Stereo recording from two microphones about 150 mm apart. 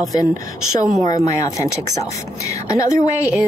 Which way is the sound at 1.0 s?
20° left (ahead or behind).